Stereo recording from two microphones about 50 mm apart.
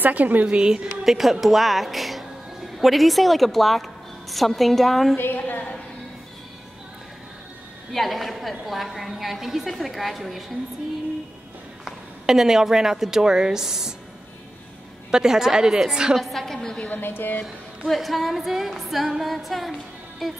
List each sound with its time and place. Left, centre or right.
0.0 s a woman's voice: right
0.5 s a woman's voice: centre
5.1 s a woman's voice: left
7.9 s a woman's voice: centre
11.8 s a woman's voice: centre
15.0 s a woman's voice: centre
16.2 s a woman's voice: centre
16.9 s a woman's voice: left
17.8 s a woman's voice: centre